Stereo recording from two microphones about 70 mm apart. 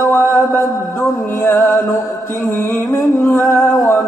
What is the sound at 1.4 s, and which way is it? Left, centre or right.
Music, left.